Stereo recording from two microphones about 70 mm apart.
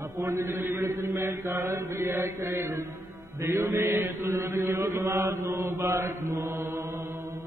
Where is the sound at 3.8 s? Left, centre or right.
Right.